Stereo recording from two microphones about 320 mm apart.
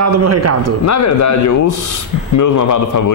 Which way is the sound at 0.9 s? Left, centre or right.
Left.